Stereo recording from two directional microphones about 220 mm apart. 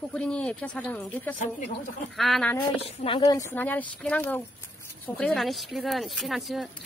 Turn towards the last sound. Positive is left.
turn(degrees=0)  # may be behind; listen again after turning